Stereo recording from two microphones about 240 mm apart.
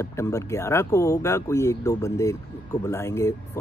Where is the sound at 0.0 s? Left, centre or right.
Centre.